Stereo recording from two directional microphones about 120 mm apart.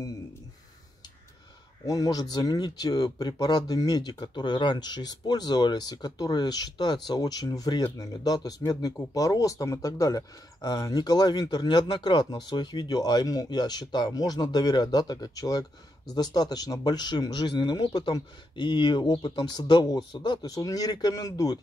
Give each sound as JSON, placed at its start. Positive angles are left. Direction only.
{"t": 1.9, "sound": "speech", "side_deg": 30}